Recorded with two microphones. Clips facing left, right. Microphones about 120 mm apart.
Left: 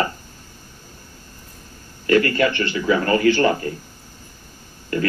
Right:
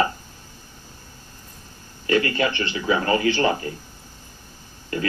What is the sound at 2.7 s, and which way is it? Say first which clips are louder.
Speech: left 3 dB; 45° left (ahead or behind).